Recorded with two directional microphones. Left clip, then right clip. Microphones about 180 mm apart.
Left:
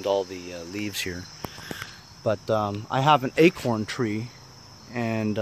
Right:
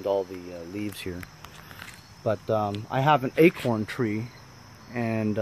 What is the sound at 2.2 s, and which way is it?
Speech, 10° left (ahead or behind).